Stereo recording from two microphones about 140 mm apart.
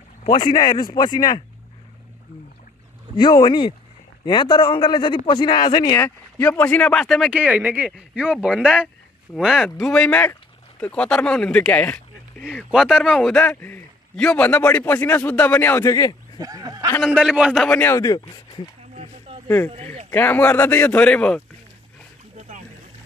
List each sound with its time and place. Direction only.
0.3 s a man's voice: 35° left (ahead or behind)
3.2 s a man's voice: 30° left (ahead or behind)
5.9 s speech: 15° left (ahead or behind)
7.3 s speech: 10° right (ahead or behind); by 15.9 s 15° left (ahead or behind)
15.9 s a man's voice: 25° left (ahead or behind)
16.3 s a sound: 25° right (ahead or behind)
17.0 s speech: 5° right (ahead or behind)
17.5 s speech: 5° left (ahead or behind)
17.9 s a man's voice: 25° left (ahead or behind)
18.9 s a sound: 45° right (ahead or behind)
19.4 s speech: 15° left (ahead or behind)
19.7 s speech: 45° right (ahead or behind)
20.1 s speech: 15° left (ahead or behind)